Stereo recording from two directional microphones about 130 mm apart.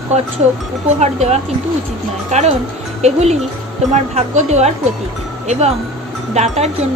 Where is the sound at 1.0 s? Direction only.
60° right (ahead or behind).